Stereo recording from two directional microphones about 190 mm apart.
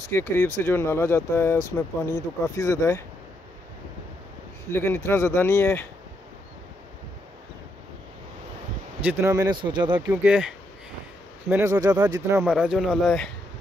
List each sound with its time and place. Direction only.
0.1 s speech: 15° left (ahead or behind)
4.6 s speech: 15° left (ahead or behind)
9.0 s speech: 15° right (ahead or behind)
10.2 s speech: 5° right (ahead or behind)
12.4 s speech: 5° right (ahead or behind)